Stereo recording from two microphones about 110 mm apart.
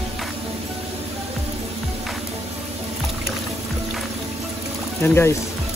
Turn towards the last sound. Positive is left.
turn(degrees=20)  # may be behind; listen again after turning